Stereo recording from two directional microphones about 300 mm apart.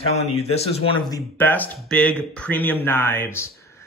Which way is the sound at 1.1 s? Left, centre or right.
Centre.